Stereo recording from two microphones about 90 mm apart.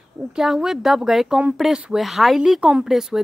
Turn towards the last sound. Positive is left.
turn(degrees=-5)  # may be behind; listen again after turning